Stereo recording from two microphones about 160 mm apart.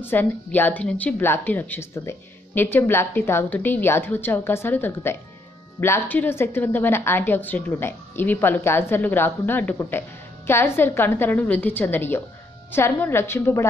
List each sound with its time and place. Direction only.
0.0 s a woman's voice: 10° left (ahead or behind)